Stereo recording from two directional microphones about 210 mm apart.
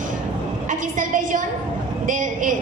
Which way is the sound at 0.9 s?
40° right (ahead or behind).